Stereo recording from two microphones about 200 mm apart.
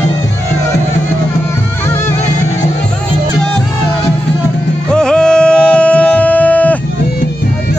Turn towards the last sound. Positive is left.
turn(degrees=5)  # may be behind; listen again after turning